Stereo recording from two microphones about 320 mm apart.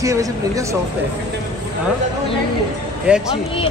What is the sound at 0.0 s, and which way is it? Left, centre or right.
Speech, centre.